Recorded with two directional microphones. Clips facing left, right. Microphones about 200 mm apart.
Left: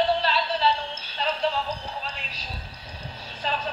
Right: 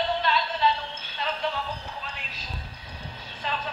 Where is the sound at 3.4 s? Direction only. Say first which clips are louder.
Left 3 dB; 35° left (ahead or behind).